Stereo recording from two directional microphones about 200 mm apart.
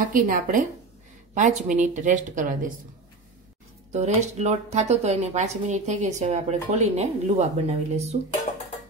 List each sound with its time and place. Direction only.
0.0 s a woman's voice: 45° right (ahead or behind)
3.9 s a woman's voice: 35° right (ahead or behind)